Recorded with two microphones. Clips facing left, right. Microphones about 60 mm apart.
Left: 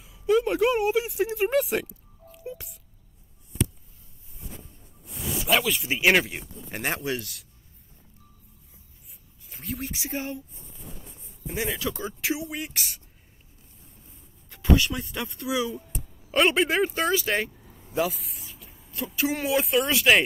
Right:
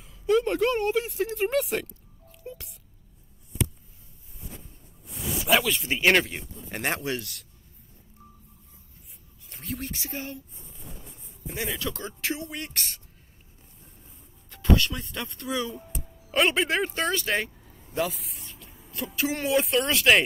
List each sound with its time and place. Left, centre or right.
0.0 s speech: centre
5.5 s speech: centre
9.5 s speech: centre
11.4 s speech: centre
14.5 s speech: centre